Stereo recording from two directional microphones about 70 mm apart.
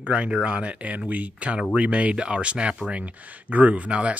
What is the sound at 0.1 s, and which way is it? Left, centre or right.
Speech, centre.